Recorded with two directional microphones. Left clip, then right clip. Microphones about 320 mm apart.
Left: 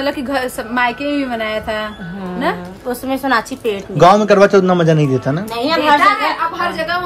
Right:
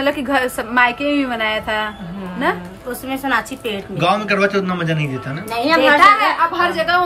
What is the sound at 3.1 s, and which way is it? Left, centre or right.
Speech, left.